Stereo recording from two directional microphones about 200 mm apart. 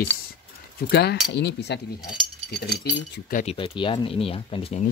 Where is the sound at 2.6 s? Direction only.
55° left (ahead or behind).